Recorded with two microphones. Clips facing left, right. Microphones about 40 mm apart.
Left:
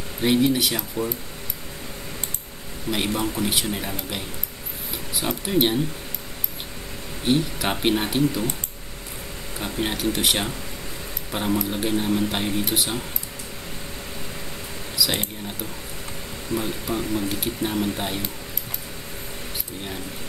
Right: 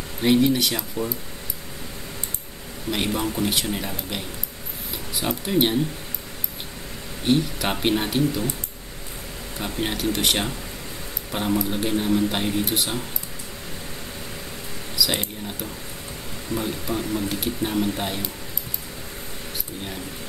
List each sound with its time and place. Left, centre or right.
0.2 s speech: centre
1.0 s speech: left
2.9 s speech: centre
5.4 s speech: centre
7.2 s speech: centre
9.6 s speech: centre
15.0 s speech: centre
16.5 s speech: left
16.8 s speech: centre